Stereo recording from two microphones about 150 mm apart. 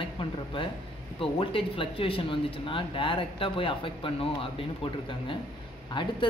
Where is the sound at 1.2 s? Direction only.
35° left (ahead or behind).